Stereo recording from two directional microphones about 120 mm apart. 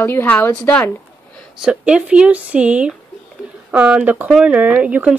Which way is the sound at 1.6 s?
10° right (ahead or behind).